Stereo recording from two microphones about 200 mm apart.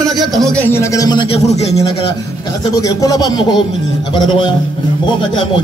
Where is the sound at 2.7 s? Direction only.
20° left (ahead or behind).